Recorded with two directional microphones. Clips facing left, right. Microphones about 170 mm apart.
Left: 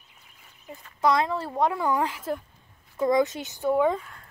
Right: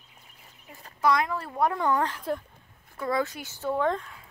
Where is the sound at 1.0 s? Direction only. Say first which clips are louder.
Left 2 dB; 25° left (ahead or behind).